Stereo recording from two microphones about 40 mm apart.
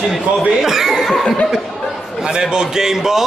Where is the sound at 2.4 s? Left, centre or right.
Centre.